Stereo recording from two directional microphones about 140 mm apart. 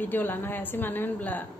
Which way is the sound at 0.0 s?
15° left (ahead or behind).